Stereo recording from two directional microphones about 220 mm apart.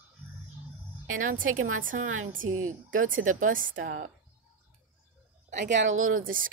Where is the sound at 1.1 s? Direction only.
35° right (ahead or behind).